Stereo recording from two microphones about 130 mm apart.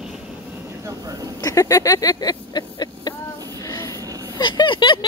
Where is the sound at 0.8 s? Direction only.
30° right (ahead or behind).